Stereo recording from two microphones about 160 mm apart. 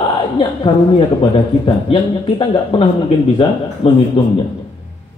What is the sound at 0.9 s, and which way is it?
A man's voice, 35° left (ahead or behind).